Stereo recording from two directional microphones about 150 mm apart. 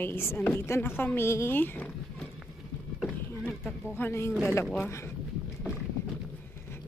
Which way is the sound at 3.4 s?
5° left (ahead or behind).